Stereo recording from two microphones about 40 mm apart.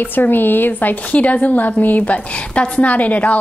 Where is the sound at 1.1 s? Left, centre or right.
Left.